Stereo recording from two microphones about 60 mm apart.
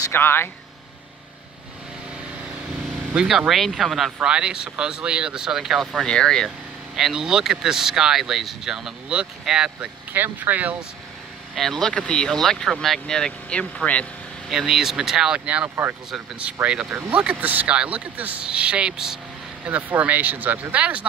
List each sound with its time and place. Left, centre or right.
0.1 s speech: left
3.2 s speech: centre
4.3 s speech: centre
6.0 s speech: centre
7.0 s speech: centre
10.1 s speech: right
11.5 s speech: centre
11.9 s speech: centre
13.0 s speech: centre
14.5 s speech: centre
15.4 s speech: right
15.7 s speech: right
16.6 s speech: centre
19.6 s speech: right